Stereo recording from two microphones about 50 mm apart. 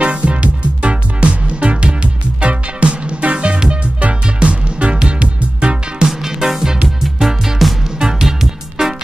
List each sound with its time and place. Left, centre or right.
0.0 s music: right
6.0 s music: centre